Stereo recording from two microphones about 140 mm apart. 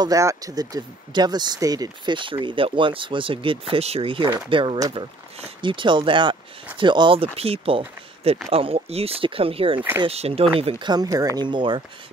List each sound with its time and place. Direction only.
0.0 s speech: 25° right (ahead or behind); by 10.9 s 45° right (ahead or behind)
10.9 s speech: 25° right (ahead or behind)